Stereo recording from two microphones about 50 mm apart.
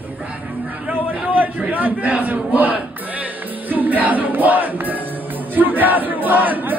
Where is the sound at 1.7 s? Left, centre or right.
Right.